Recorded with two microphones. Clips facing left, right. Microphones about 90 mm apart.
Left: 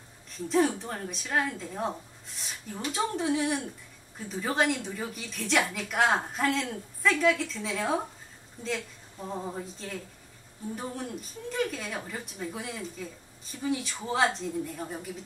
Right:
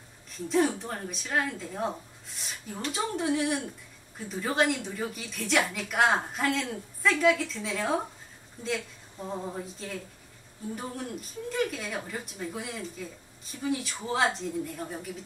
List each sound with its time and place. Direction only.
0.5 s a woman's voice: centre (ahead or behind)
9.3 s a woman's voice: centre (ahead or behind)